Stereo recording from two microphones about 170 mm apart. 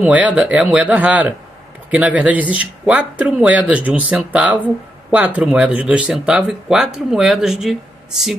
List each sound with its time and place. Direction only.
0.0 s speech: 10° right (ahead or behind)